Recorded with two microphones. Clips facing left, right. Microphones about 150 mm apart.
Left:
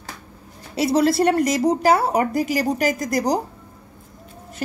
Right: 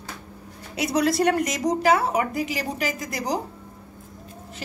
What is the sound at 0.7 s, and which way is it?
Speech, 30° left (ahead or behind).